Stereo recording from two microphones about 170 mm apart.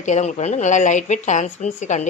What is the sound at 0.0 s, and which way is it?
Speech, 45° left (ahead or behind).